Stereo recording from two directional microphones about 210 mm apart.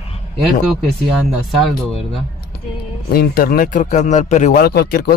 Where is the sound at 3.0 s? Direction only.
45° left (ahead or behind).